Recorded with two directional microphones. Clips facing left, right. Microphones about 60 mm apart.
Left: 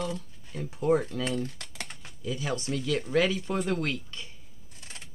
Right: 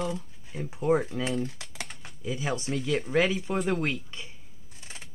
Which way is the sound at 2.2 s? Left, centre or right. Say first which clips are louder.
Right 1 dB; right.